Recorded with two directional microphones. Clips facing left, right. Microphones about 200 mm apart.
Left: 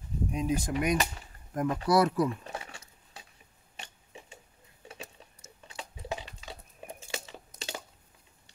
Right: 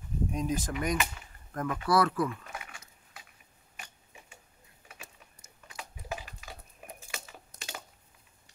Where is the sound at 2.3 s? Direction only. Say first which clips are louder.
Left 4 dB; 30° left (ahead or behind).